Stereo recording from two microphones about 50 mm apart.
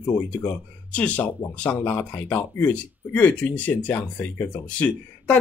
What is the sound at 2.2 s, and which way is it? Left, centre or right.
Speech, left.